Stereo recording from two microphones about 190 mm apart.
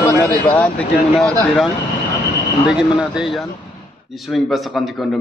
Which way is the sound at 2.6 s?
5° right (ahead or behind).